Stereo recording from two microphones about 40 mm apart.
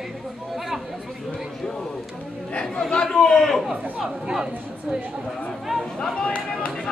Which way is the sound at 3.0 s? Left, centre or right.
Centre.